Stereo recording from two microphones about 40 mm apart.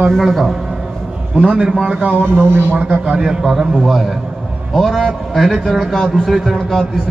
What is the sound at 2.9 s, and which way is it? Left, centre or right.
A man's voice, centre.